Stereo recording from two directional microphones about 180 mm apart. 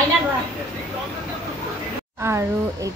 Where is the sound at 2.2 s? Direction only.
15° right (ahead or behind).